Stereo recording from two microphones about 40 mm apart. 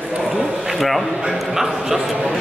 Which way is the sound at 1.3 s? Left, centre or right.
Centre.